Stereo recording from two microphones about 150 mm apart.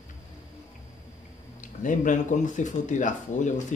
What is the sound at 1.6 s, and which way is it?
Speech, 60° left (ahead or behind).